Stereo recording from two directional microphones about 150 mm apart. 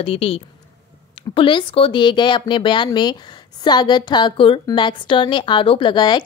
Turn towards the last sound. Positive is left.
turn(degrees=30)  # may be behind; listen again after turning